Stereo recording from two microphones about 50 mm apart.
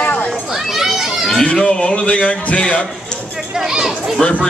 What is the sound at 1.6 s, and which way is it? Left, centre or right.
Speech, centre.